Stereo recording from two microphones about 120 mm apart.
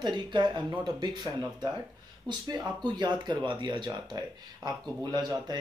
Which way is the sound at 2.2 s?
35° right (ahead or behind).